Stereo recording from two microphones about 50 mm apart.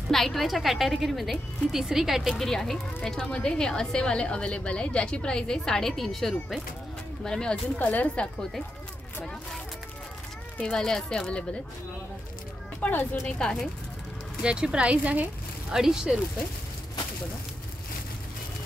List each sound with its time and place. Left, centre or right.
0.1 s a woman's voice: centre
2.3 s speech: centre
7.2 s speech: centre
7.8 s a woman's voice: left
9.2 s speech: centre
10.6 s speech: centre
12.8 s a woman's voice: left
13.4 s speech: centre
14.4 s a woman's voice: centre
15.7 s speech: centre